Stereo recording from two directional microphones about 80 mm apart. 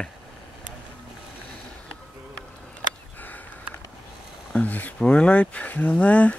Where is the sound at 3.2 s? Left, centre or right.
Left.